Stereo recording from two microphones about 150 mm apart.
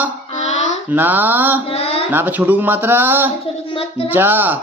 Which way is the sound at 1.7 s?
40° left (ahead or behind).